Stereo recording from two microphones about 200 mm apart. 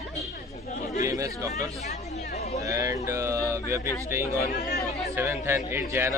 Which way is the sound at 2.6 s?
15° right (ahead or behind).